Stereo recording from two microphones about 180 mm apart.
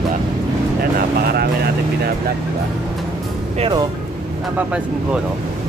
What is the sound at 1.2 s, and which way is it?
Speech, 60° right (ahead or behind).